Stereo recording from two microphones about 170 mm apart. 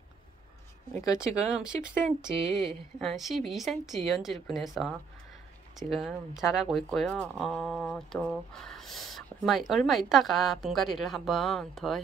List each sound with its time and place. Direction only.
1.1 s speech: 5° right (ahead or behind)
5.8 s speech: centre (ahead or behind)